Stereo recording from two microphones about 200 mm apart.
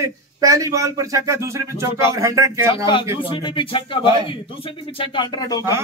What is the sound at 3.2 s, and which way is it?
Speech, 25° left (ahead or behind).